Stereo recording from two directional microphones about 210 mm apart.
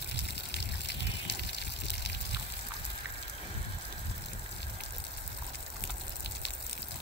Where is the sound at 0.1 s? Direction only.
55° left (ahead or behind).